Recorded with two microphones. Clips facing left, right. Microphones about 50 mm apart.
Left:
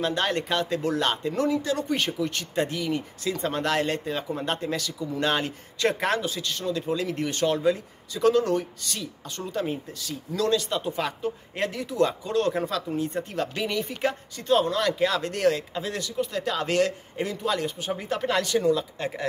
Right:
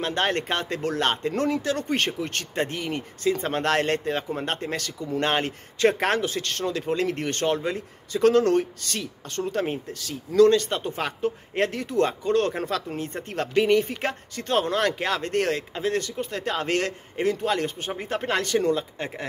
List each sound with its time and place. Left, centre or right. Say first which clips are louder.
0.0 s a man's voice: right 1 dB; right